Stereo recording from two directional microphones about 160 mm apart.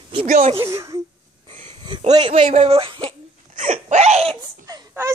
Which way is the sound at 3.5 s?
50° right (ahead or behind).